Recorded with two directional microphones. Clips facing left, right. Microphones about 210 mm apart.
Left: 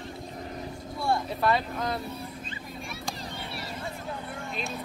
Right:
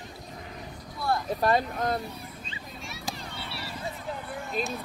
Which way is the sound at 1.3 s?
45° right (ahead or behind).